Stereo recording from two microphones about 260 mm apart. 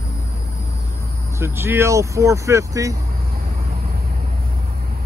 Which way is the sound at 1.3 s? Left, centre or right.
Centre.